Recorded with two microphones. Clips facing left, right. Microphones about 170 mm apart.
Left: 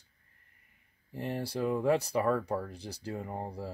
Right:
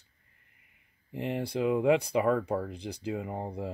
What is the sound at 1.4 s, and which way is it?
Speech, 65° right (ahead or behind).